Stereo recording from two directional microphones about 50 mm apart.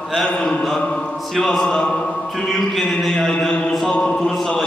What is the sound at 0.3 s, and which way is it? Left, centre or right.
Mantra, left.